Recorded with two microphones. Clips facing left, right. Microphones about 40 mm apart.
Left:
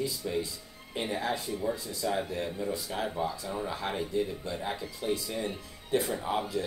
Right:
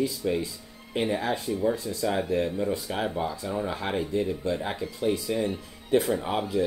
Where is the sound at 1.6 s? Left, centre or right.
Right.